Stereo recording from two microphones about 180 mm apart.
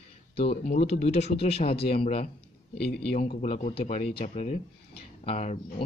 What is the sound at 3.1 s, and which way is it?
A man's voice, 35° left (ahead or behind).